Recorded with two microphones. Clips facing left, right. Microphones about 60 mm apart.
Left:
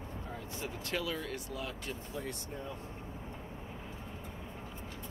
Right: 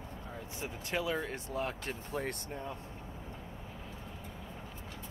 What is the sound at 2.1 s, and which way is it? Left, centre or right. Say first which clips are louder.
Speech: right 5 dB; right.